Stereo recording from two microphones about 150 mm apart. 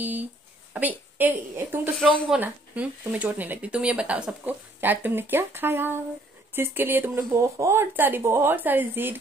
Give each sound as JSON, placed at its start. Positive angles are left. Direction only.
{"t": 0.0, "sound": "a sound", "side_deg": -10}
{"t": 0.7, "sound": "speech", "side_deg": -10}
{"t": 2.0, "sound": "speech", "side_deg": 0}